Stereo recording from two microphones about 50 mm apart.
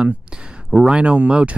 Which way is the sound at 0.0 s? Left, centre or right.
Centre.